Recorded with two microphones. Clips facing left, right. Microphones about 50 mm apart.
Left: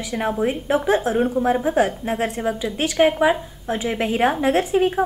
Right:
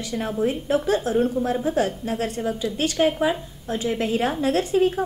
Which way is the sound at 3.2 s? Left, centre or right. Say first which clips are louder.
Left 5 dB; left.